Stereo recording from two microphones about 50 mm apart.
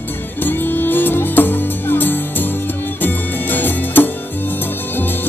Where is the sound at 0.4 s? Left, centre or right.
Left.